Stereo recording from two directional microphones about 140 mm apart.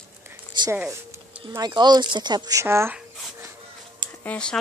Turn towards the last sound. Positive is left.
turn(degrees=10)  # may be behind; listen again after turning